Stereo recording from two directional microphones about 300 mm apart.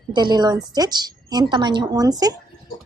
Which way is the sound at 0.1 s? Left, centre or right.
Centre.